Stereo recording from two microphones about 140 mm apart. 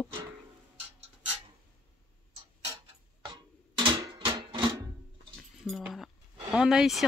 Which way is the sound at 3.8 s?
30° right (ahead or behind).